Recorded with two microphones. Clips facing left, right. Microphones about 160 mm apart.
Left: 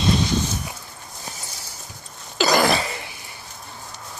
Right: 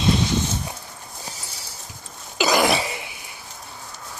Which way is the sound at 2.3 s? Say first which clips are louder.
Left 1 dB; 10° right (ahead or behind).